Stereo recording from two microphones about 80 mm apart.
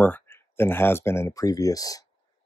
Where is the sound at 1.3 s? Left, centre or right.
Left.